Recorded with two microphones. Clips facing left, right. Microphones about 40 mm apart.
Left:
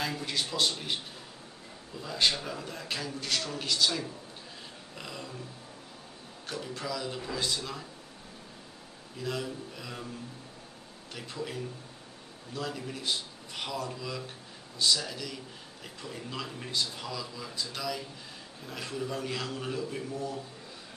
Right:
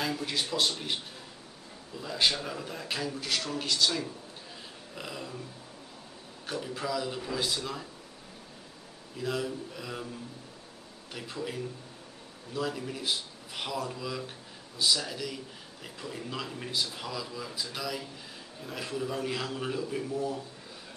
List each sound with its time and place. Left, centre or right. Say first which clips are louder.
0.0 s a man's voice: right 1 dB; centre
2.0 s a man's voice: even; centre
6.4 s a man's voice: right 3 dB; centre
9.2 s a man's voice: right 2 dB; centre
11.1 s a man's voice: right 1 dB; centre
12.5 s a man's voice: right 3 dB; centre